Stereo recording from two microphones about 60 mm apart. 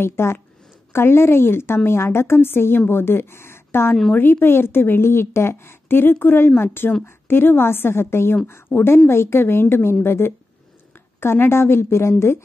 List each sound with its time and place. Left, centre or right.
0.0 s a woman's voice: left